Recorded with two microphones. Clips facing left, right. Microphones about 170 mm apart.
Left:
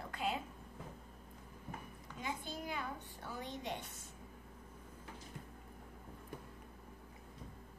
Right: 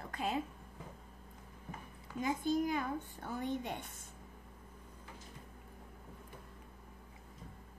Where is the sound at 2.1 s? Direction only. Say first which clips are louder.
Right 11 dB; 45° right (ahead or behind).